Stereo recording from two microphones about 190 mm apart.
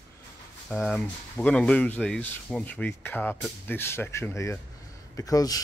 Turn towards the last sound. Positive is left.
turn(degrees=20)  # may be behind; listen again after turning